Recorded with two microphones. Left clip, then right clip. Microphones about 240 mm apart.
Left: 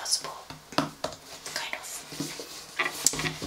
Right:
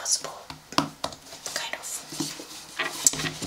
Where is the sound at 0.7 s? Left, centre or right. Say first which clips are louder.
Right 3 dB; centre.